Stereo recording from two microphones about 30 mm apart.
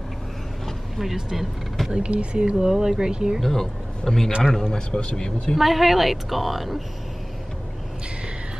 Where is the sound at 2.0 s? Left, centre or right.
Right.